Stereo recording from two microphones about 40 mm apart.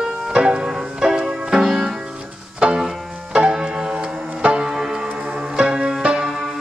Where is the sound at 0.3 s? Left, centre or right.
Right.